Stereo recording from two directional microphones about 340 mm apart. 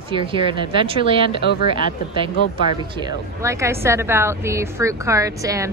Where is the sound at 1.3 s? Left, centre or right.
Left.